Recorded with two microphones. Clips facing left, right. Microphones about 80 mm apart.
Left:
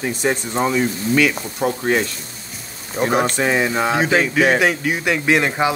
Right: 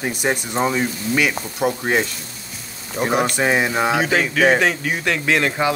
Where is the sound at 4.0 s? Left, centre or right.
Left.